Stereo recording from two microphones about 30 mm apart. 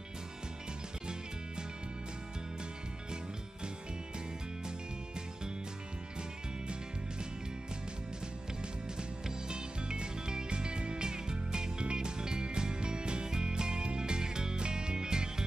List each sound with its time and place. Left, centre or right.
9.5 s music: right